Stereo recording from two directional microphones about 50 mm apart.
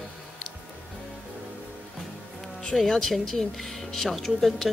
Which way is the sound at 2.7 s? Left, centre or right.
Centre.